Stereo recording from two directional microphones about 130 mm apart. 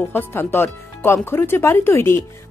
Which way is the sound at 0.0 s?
15° left (ahead or behind).